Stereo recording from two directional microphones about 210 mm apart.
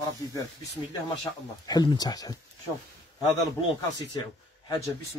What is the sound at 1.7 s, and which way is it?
Speech, 20° left (ahead or behind).